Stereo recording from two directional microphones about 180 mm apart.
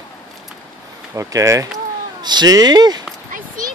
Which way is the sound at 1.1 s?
15° right (ahead or behind).